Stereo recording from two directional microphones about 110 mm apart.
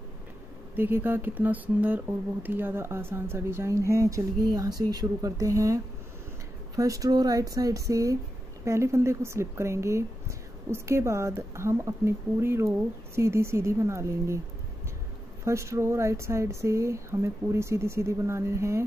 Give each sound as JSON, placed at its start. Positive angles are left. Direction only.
{"t": 0.7, "sound": "speech", "side_deg": -20}
{"t": 6.8, "sound": "speech", "side_deg": -30}
{"t": 15.4, "sound": "speech", "side_deg": -25}